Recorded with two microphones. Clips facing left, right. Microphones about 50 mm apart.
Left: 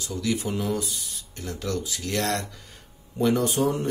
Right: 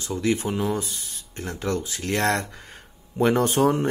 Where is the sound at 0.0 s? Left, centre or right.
Right.